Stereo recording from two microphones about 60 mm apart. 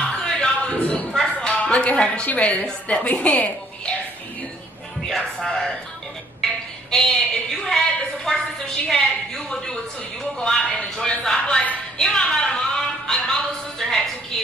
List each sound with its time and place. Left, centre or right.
0.2 s a sound: centre
2.6 s a woman's voice: left
5.0 s a woman's voice: centre